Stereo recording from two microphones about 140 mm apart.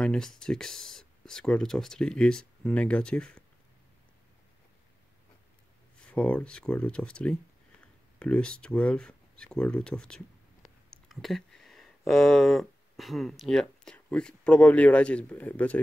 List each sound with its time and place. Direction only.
0.0 s speech: 5° left (ahead or behind)
6.0 s speech: 10° left (ahead or behind)